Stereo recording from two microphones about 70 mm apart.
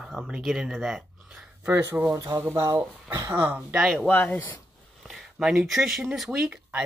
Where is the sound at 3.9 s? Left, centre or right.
Left.